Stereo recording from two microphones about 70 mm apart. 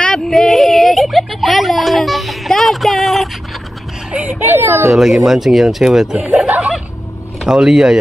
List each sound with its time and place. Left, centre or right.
0.0 s a sound: centre
4.1 s a child's voice: right
4.9 s speech: centre
7.4 s speech: centre